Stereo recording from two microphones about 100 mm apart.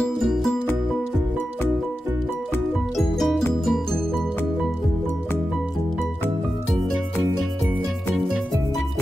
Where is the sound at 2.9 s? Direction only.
Centre (ahead or behind).